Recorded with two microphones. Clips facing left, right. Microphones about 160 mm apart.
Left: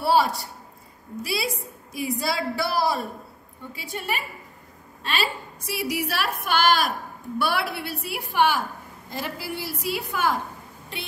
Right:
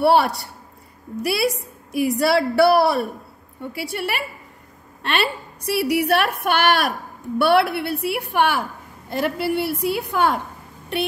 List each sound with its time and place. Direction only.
0.0 s a woman's voice: 65° right (ahead or behind)